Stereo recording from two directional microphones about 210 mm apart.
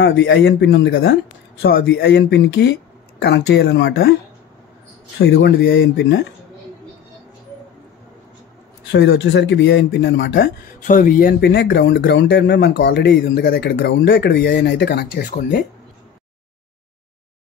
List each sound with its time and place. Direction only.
0.0 s speech: 60° left (ahead or behind)
5.2 s speech: 50° left (ahead or behind)
8.9 s speech: 55° left (ahead or behind)
10.9 s speech: 40° left (ahead or behind)